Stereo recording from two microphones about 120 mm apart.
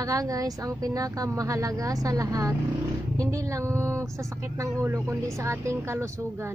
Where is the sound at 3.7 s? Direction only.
25° right (ahead or behind).